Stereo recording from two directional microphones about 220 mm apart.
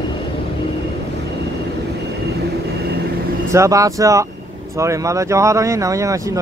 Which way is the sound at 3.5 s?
15° right (ahead or behind).